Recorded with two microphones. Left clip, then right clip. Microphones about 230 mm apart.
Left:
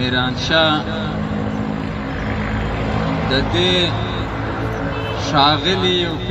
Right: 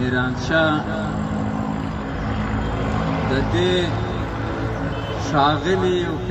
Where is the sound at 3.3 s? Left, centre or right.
Left.